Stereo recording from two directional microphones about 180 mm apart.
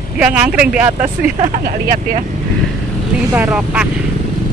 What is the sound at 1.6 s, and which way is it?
Speech, 50° right (ahead or behind).